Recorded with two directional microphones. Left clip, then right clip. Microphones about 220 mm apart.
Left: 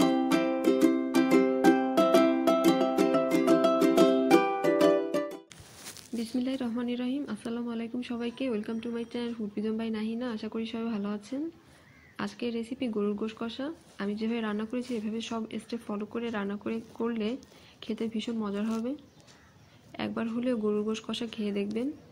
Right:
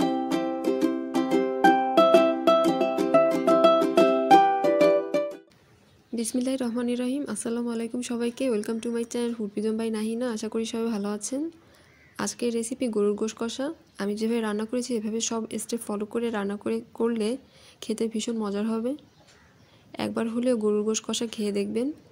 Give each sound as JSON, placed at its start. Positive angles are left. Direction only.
{"t": 0.0, "sound": "music", "side_deg": -30}
{"t": 0.7, "sound": "music", "side_deg": -15}
{"t": 4.8, "sound": "music", "side_deg": -40}
{"t": 6.1, "sound": "speech", "side_deg": -60}